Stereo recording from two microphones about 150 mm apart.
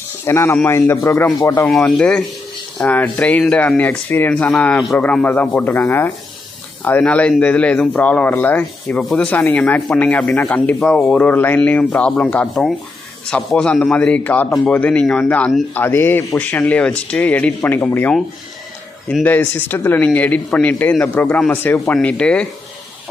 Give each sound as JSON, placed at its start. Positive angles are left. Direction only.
{"t": 0.2, "sound": "speech", "side_deg": 15}
{"t": 1.7, "sound": "speech", "side_deg": 5}
{"t": 19.2, "sound": "speech", "side_deg": 15}